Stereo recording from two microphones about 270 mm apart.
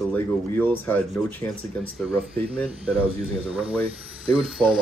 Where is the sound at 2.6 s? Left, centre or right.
Centre.